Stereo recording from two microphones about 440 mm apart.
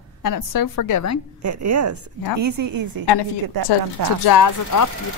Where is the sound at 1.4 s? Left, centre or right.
Right.